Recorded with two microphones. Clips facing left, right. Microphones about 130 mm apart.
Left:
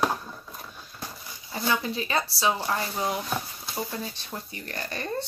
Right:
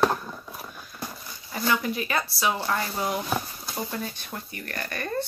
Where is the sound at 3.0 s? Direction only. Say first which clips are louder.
Right 1 dB; centre (ahead or behind).